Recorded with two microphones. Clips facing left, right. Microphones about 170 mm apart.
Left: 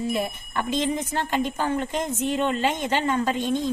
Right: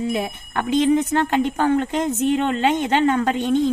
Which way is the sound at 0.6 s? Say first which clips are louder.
Right 8 dB; 60° right (ahead or behind).